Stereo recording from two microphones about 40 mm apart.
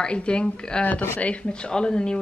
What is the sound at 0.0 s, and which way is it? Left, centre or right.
A woman's voice, left.